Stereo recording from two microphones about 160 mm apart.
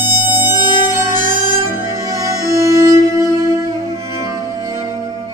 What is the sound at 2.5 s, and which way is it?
Music, 20° right (ahead or behind).